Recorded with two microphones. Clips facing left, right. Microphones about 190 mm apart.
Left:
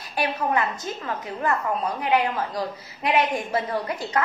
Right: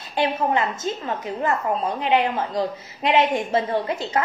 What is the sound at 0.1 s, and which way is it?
A woman's voice, 25° right (ahead or behind).